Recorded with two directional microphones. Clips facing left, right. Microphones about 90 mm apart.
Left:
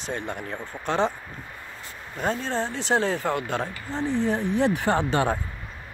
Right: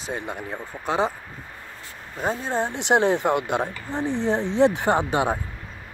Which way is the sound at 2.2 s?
10° right (ahead or behind).